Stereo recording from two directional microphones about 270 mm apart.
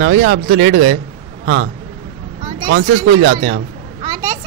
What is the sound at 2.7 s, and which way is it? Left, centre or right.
Speech, right.